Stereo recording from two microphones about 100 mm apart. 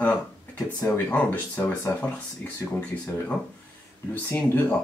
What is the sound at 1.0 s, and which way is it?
Speech, 20° left (ahead or behind).